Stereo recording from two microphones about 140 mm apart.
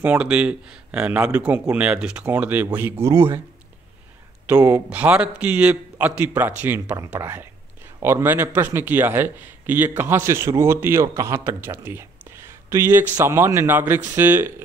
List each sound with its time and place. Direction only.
0.0 s a man's voice: 10° right (ahead or behind)
4.5 s a man's voice: 10° right (ahead or behind)